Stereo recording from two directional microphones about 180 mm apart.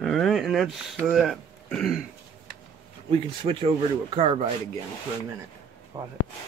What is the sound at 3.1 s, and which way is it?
Speech, 35° right (ahead or behind).